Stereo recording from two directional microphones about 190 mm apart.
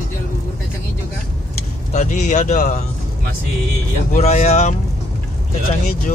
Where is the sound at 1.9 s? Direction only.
40° left (ahead or behind).